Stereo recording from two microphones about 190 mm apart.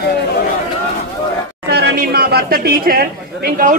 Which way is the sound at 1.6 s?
60° right (ahead or behind).